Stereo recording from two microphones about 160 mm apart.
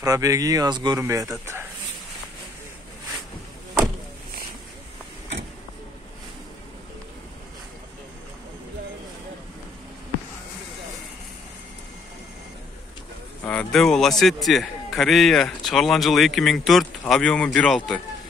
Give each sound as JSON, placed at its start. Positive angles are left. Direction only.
{"t": 0.0, "sound": "speech", "side_deg": -20}
{"t": 13.4, "sound": "a man's voice", "side_deg": 10}